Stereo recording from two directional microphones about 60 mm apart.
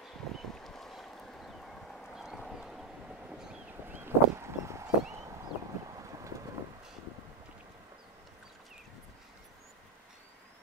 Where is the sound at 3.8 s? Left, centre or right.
Right.